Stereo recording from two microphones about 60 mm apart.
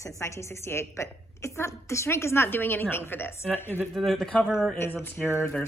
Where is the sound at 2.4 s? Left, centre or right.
Left.